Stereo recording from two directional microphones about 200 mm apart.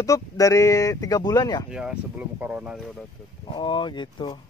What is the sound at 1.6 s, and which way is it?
Speech, 5° right (ahead or behind).